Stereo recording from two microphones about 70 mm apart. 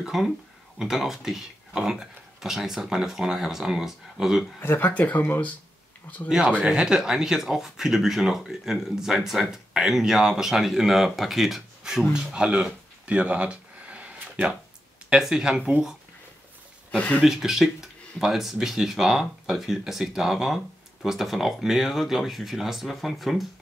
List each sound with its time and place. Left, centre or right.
0.0 s speech: centre
4.6 s speech: left
6.2 s speech: centre
12.1 s a sound: centre
15.0 s speech: centre
16.9 s speech: centre
17.2 s speech: centre